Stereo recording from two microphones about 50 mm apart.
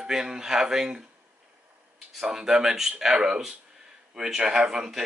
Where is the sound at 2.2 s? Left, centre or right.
Centre.